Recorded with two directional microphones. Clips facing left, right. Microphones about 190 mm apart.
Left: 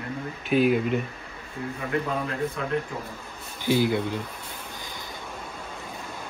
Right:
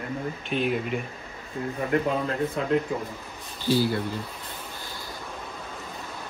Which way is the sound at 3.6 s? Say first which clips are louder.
Left 1 dB; 15° left (ahead or behind).